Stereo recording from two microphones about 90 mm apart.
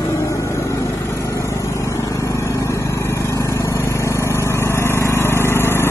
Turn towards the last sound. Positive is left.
turn(degrees=25)  # may be behind; listen again after turning